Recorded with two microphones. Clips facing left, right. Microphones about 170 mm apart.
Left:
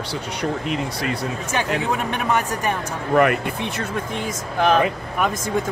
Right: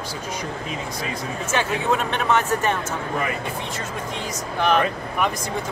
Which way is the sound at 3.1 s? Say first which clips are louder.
Left 12 dB; 65° left (ahead or behind).